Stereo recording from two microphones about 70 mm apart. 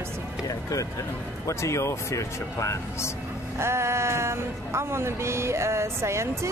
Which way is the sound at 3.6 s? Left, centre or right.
Right.